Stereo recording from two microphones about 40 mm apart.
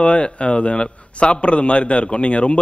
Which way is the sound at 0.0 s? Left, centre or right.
Left.